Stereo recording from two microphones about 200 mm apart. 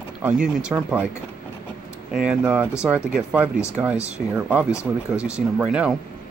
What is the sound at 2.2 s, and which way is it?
Speech, 5° right (ahead or behind).